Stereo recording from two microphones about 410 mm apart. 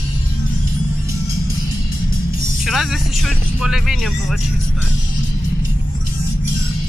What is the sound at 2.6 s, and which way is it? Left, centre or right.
Music, centre.